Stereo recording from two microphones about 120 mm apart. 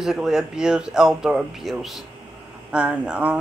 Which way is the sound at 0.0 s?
5° right (ahead or behind).